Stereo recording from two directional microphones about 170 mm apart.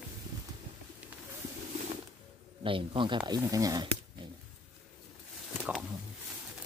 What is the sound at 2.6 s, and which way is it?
Speech, 30° right (ahead or behind).